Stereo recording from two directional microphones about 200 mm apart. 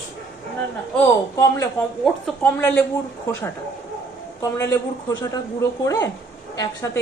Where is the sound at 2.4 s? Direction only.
5° left (ahead or behind).